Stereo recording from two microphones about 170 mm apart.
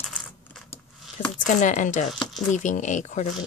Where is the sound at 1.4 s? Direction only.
45° left (ahead or behind).